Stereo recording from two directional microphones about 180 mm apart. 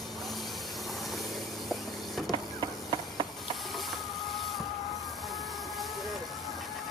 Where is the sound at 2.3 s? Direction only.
30° right (ahead or behind).